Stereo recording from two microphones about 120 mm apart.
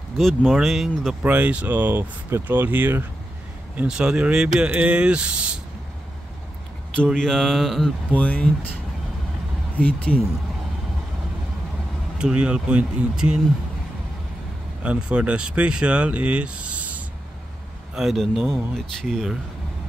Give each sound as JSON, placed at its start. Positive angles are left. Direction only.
{"t": 0.2, "sound": "speech", "side_deg": 0}
{"t": 7.1, "sound": "speech", "side_deg": 5}
{"t": 9.8, "sound": "speech", "side_deg": 10}
{"t": 12.2, "sound": "speech", "side_deg": -10}
{"t": 14.8, "sound": "speech", "side_deg": -10}